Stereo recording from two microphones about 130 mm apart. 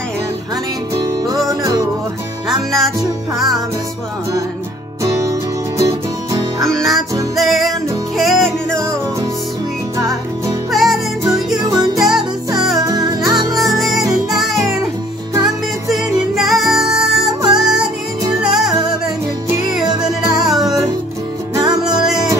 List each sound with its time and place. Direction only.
1.0 s music: 30° right (ahead or behind)
2.4 s music: centre (ahead or behind)
3.0 s music: 30° right (ahead or behind)
5.0 s music: 25° right (ahead or behind)
6.6 s music: centre (ahead or behind)
8.7 s music: 25° right (ahead or behind)
10.7 s music: centre (ahead or behind)
11.6 s music: 30° right (ahead or behind)
13.7 s music: centre (ahead or behind)
15.9 s music: centre (ahead or behind)
20.4 s music: 5° right (ahead or behind)
21.5 s music: 30° right (ahead or behind)